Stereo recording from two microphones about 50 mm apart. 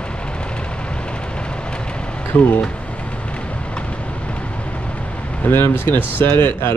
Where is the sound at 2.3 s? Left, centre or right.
Left.